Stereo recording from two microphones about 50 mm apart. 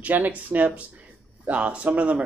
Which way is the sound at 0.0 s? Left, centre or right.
Right.